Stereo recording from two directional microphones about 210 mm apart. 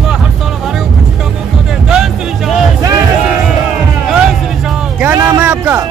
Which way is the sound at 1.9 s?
Centre (ahead or behind).